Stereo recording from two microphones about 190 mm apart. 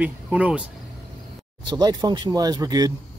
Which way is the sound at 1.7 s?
20° right (ahead or behind).